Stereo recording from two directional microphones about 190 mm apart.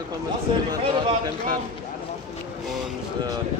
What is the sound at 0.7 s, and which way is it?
Speech, 20° right (ahead or behind).